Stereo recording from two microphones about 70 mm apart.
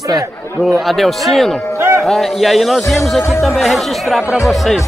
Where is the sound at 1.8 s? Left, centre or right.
Right.